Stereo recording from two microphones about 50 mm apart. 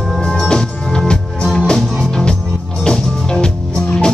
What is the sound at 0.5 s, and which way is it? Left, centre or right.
Music, centre.